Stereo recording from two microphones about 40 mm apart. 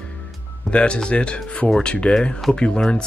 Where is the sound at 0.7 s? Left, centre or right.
Left.